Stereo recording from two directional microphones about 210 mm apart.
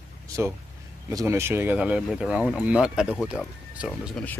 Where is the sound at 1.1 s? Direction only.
10° right (ahead or behind).